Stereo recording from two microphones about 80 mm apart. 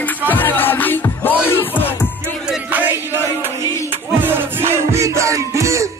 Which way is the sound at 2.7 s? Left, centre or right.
Right.